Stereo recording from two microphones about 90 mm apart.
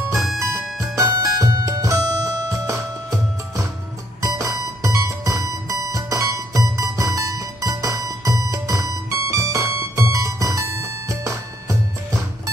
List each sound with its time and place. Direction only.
0.7 s music: 35° right (ahead or behind)